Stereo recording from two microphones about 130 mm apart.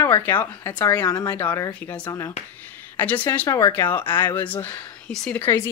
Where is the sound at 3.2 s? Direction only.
20° left (ahead or behind); by 5.4 s 5° left (ahead or behind).